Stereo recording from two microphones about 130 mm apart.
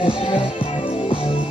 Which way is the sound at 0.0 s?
40° left (ahead or behind).